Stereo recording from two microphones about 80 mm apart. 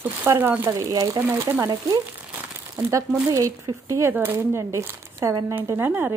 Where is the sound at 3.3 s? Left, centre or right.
Right.